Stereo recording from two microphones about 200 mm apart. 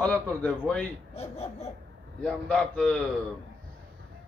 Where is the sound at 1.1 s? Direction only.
30° left (ahead or behind).